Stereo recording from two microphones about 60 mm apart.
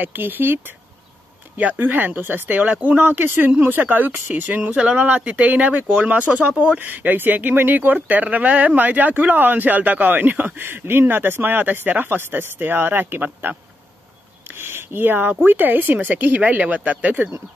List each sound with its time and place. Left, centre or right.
0.0 s speech: right